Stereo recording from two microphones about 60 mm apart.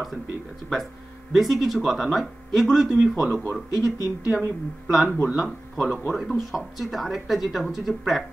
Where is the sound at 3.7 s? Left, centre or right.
Left.